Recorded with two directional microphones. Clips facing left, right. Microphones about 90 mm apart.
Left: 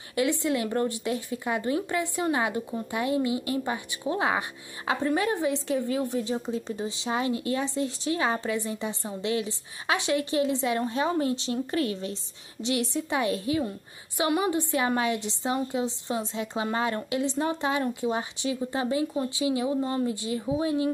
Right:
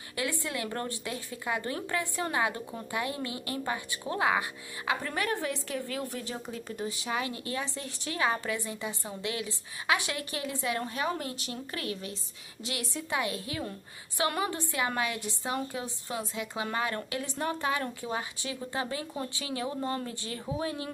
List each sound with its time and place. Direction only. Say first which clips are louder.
0.1 s a woman's voice: left 8 dB; 20° left (ahead or behind)